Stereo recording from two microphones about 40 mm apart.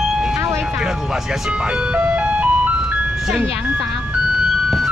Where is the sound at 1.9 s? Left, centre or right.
Right.